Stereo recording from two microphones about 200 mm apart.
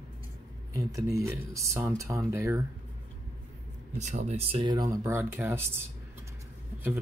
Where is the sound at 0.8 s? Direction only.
15° right (ahead or behind).